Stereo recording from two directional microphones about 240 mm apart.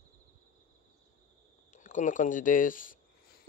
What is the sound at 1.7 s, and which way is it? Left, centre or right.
Speech, left.